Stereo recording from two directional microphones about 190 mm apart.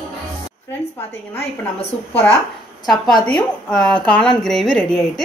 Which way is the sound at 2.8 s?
20° left (ahead or behind).